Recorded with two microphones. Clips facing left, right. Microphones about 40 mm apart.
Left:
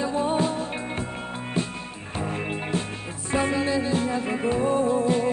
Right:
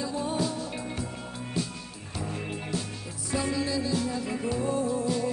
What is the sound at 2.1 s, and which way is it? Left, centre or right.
Music, left.